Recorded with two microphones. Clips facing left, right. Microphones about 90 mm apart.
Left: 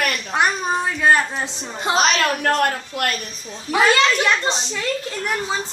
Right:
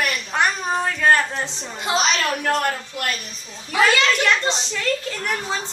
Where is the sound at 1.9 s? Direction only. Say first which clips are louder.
Left 3 dB; 50° left (ahead or behind).